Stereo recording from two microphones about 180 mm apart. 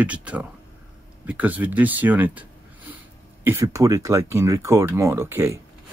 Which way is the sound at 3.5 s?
15° right (ahead or behind).